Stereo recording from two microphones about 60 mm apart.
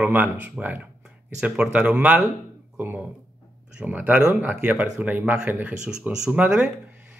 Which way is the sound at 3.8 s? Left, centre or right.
Right.